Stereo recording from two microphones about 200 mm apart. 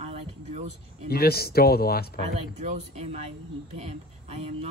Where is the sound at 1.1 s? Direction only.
50° left (ahead or behind).